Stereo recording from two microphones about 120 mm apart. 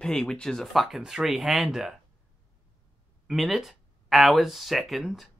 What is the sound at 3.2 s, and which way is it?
Speech, centre (ahead or behind).